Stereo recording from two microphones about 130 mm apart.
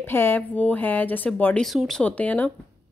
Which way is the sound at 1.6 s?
5° left (ahead or behind).